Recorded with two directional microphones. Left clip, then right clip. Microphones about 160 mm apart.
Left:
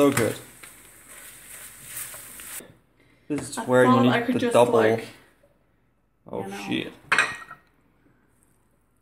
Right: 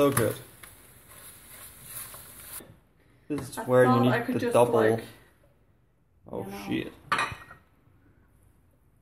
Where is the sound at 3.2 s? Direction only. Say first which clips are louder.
Left 4 dB; 10° left (ahead or behind).